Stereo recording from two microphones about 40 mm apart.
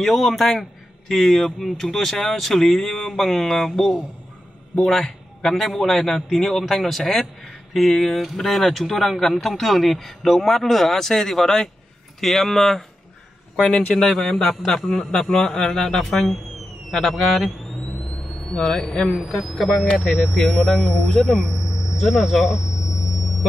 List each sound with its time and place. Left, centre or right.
0.0 s a man's voice: centre
13.6 s a man's voice: left
13.9 s speech: centre
18.6 s a man's voice: centre
18.9 s a man's voice: centre
20.4 s a man's voice: centre
21.5 s speech: centre
23.0 s sonar: centre